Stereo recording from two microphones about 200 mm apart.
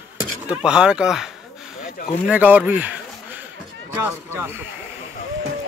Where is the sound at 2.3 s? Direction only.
10° right (ahead or behind).